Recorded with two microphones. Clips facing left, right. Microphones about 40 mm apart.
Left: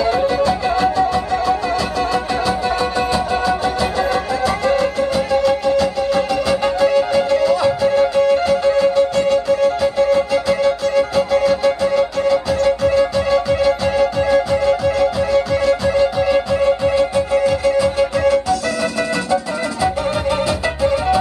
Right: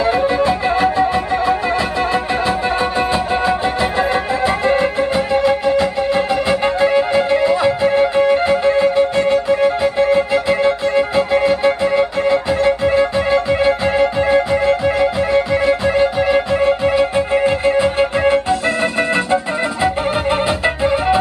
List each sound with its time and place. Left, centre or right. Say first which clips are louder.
0.0 s music: right 1 dB; right